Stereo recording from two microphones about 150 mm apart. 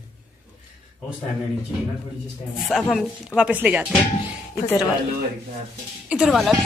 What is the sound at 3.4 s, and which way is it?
Speech, 10° right (ahead or behind).